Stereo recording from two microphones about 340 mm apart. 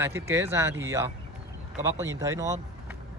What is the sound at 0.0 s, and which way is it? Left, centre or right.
Speech, centre.